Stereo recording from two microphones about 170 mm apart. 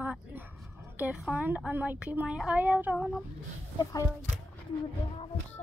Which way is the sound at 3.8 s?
20° left (ahead or behind).